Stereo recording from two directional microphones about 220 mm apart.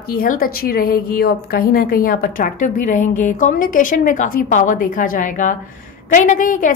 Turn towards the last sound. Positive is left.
turn(degrees=35)  # may be behind; listen again after turning